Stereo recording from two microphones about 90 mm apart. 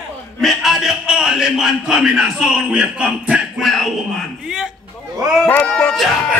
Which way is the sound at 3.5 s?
Centre (ahead or behind).